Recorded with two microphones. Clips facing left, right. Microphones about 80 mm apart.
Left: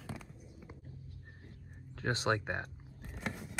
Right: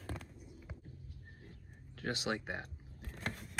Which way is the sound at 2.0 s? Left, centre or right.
Left.